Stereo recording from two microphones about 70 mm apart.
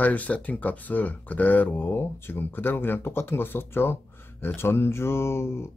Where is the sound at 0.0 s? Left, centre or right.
Left.